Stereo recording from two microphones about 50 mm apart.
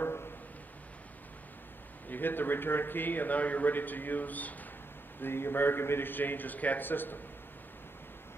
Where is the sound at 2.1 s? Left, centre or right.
Left.